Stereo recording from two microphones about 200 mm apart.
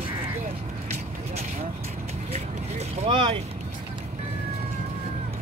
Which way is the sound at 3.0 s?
25° right (ahead or behind).